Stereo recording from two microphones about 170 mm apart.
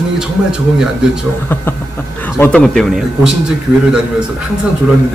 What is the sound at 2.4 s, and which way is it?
Speech, 5° left (ahead or behind).